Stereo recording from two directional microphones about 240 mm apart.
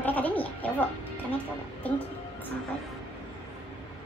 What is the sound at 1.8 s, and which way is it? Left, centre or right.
Speech, centre.